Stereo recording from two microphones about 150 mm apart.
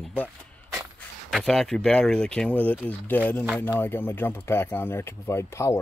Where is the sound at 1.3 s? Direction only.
Centre (ahead or behind).